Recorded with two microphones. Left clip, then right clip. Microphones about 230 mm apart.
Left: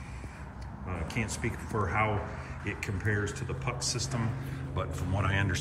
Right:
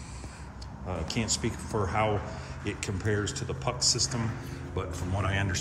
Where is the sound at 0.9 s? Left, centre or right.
Centre.